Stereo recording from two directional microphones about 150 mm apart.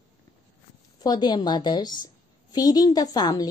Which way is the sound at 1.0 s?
25° left (ahead or behind).